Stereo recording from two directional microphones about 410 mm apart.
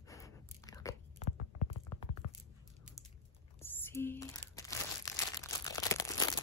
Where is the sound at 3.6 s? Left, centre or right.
Centre.